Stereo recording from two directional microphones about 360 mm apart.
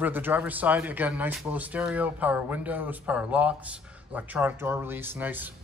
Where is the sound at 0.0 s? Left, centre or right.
Centre.